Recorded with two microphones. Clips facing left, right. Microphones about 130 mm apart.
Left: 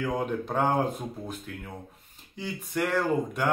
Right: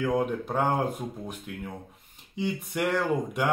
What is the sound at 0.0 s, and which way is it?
Speech, 10° right (ahead or behind).